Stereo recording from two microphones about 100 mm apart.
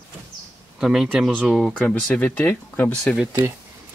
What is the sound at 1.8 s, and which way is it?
Speech, 15° left (ahead or behind).